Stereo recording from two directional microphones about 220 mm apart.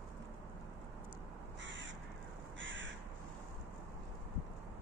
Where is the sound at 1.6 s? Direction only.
55° right (ahead or behind).